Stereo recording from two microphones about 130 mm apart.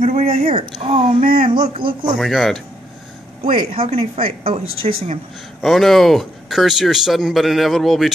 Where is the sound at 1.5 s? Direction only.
35° right (ahead or behind).